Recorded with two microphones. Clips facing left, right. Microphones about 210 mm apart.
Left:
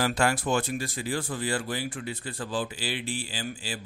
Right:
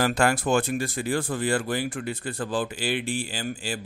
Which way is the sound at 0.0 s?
50° right (ahead or behind).